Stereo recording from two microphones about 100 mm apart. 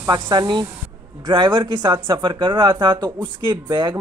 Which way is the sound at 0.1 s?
45° right (ahead or behind).